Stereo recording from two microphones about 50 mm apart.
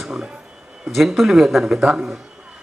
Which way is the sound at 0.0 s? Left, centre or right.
Centre.